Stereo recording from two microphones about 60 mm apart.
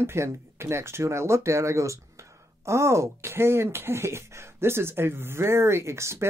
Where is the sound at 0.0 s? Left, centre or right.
Right.